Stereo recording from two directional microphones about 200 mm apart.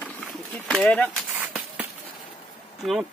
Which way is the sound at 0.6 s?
5° left (ahead or behind).